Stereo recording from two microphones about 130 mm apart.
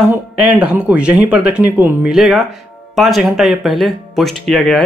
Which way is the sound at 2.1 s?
Centre (ahead or behind).